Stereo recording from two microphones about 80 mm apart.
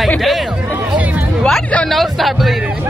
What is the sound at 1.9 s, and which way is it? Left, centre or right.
Speech, centre.